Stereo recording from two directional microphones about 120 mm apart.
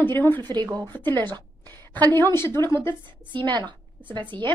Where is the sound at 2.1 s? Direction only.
20° left (ahead or behind).